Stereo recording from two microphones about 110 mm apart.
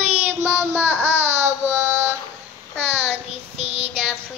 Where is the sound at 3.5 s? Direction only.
70° right (ahead or behind).